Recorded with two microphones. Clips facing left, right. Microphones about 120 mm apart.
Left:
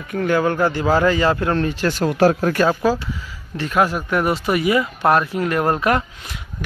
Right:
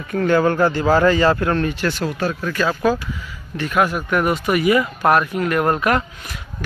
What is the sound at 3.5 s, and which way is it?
Speech, 30° left (ahead or behind).